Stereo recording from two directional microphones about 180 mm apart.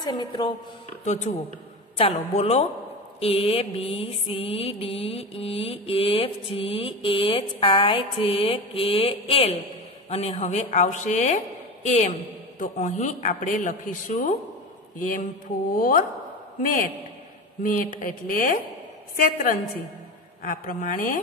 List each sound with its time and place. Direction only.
0.0 s speech: 20° left (ahead or behind)
1.0 s mantra: 40° left (ahead or behind)
12.5 s a man's voice: 45° left (ahead or behind)
18.0 s a man's voice: 50° left (ahead or behind)